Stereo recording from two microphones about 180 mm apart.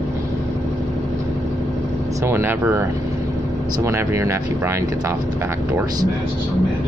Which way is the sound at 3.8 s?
15° right (ahead or behind).